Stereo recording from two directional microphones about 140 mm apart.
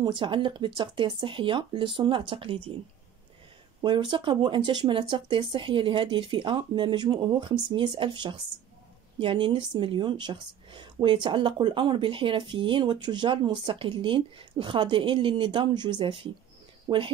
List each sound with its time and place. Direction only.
0.0 s speech: 35° right (ahead or behind)
3.8 s speech: 35° right (ahead or behind)